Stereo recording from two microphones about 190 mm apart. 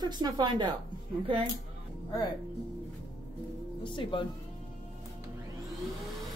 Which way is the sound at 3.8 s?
25° left (ahead or behind).